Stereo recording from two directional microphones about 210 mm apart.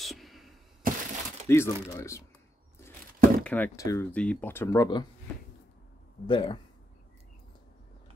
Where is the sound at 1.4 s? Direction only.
10° left (ahead or behind).